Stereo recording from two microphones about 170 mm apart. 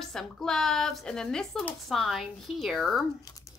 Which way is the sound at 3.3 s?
20° left (ahead or behind).